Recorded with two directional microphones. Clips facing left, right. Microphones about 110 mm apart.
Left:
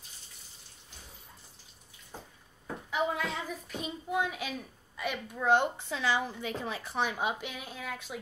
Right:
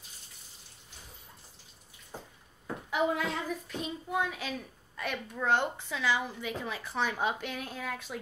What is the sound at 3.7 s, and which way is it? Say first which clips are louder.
A woman's voice: left 1 dB; 15° left (ahead or behind).